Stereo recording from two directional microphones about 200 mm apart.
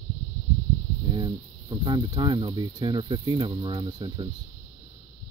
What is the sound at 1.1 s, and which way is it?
Speech, 20° right (ahead or behind).